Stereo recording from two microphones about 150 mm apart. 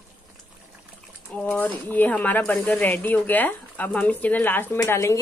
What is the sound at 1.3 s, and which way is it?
Speech, 10° left (ahead or behind).